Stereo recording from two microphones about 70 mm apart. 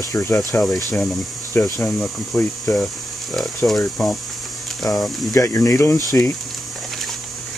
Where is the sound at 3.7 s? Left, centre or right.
Centre.